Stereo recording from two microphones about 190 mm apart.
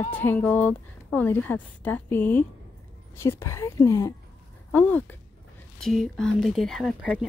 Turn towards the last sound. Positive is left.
turn(degrees=0)  # may be behind; listen again after turning